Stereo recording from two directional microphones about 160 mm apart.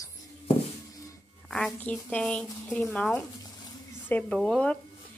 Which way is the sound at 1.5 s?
5° left (ahead or behind).